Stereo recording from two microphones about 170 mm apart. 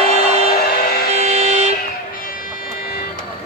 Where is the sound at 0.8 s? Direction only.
65° left (ahead or behind).